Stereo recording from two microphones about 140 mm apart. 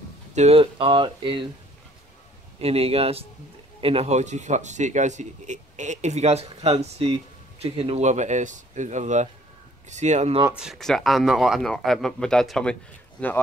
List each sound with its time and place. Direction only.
0.3 s speech: 50° right (ahead or behind)
2.6 s a man's voice: 45° right (ahead or behind)
10.5 s speech: 5° right (ahead or behind)